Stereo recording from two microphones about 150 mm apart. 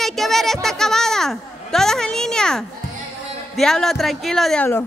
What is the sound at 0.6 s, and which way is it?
A child's voice, 5° left (ahead or behind).